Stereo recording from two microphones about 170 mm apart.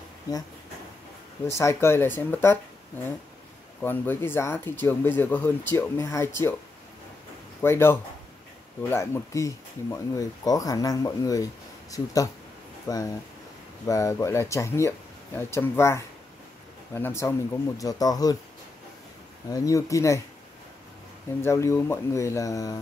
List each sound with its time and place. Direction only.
0.3 s speech: 20° left (ahead or behind)
1.5 s speech: 15° left (ahead or behind)
7.6 s speech: 15° left (ahead or behind)
19.5 s speech: 20° left (ahead or behind)
21.4 s speech: 15° left (ahead or behind)